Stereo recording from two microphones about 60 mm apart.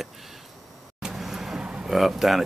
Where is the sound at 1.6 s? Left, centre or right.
Centre.